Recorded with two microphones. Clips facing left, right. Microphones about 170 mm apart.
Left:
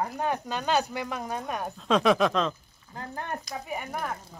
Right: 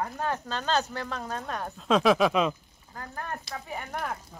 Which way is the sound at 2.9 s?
25° left (ahead or behind).